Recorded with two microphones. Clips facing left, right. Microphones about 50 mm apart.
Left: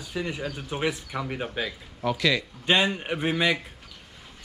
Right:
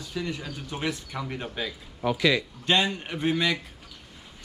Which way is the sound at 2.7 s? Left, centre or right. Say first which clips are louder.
Left 2 dB; centre.